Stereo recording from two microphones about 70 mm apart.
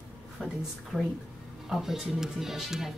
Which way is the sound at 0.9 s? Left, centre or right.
Centre.